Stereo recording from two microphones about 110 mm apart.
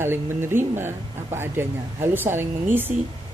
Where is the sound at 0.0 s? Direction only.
20° right (ahead or behind).